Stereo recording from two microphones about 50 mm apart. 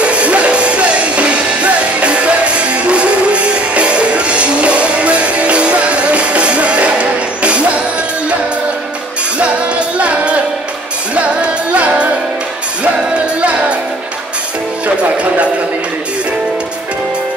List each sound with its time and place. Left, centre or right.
0.0 s music: right
9.4 s music: right
11.8 s music: right